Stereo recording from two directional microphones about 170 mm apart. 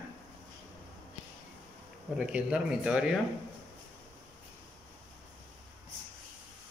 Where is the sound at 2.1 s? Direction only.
5° right (ahead or behind).